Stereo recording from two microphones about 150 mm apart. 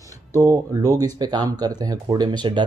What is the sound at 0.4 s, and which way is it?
Speech, 25° right (ahead or behind).